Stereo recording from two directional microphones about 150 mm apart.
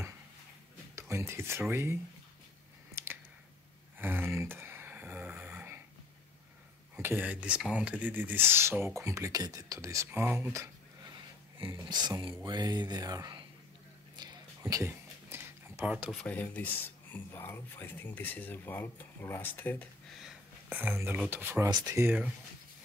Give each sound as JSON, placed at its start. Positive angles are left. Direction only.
{"t": 0.9, "sound": "speech", "side_deg": -20}
{"t": 2.9, "sound": "squish", "side_deg": -15}
{"t": 4.0, "sound": "snoring", "side_deg": -15}
{"t": 7.0, "sound": "speech", "side_deg": -15}
{"t": 11.9, "sound": "speech", "side_deg": -30}
{"t": 14.1, "sound": "a sound", "side_deg": -25}
{"t": 16.2, "sound": "speech", "side_deg": 10}
{"t": 20.2, "sound": "a sound", "side_deg": -5}
{"t": 21.2, "sound": "speech", "side_deg": -15}
{"t": 21.6, "sound": "speech", "side_deg": -30}
{"t": 22.0, "sound": "speech", "side_deg": -10}